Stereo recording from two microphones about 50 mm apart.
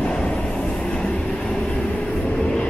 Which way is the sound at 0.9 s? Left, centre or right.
Centre.